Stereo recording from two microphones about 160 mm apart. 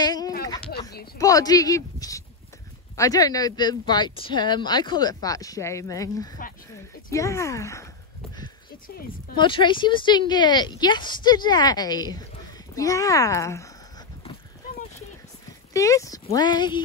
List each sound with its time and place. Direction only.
0.0 s a sound: 25° left (ahead or behind)
1.1 s speech: 20° left (ahead or behind)
9.4 s speech: 30° left (ahead or behind)
15.7 s speech: 20° left (ahead or behind)